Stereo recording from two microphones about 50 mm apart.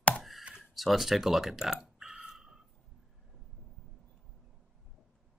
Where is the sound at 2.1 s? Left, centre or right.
Centre.